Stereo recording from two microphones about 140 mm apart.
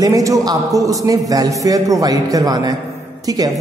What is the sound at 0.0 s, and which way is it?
A man's voice, 25° right (ahead or behind).